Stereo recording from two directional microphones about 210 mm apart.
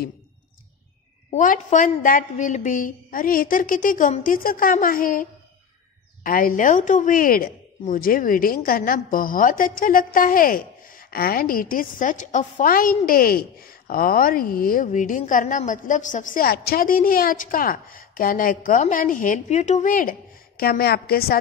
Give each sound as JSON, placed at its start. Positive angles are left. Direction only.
{"t": 1.3, "sound": "a woman's voice", "side_deg": 35}
{"t": 6.2, "sound": "a woman's voice", "side_deg": 40}